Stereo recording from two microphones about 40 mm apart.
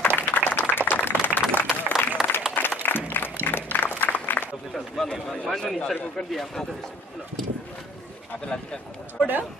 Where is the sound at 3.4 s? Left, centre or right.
Left.